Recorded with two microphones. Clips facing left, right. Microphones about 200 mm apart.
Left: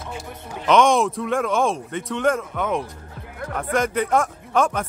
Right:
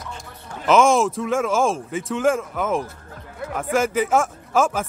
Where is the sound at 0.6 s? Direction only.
5° right (ahead or behind).